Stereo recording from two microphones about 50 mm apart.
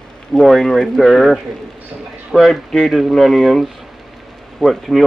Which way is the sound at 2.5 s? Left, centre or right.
Centre.